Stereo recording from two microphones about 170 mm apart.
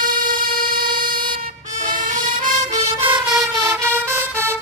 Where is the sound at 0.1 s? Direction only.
55° right (ahead or behind).